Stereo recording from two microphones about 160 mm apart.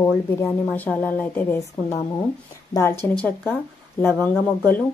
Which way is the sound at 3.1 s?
10° left (ahead or behind).